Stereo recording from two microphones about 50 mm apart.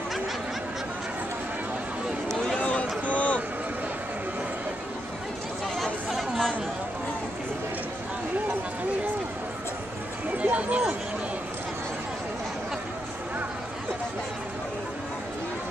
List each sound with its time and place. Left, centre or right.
2.6 s a sound: left
3.2 s vehicle: left
6.0 s chatter: centre
10.3 s run: right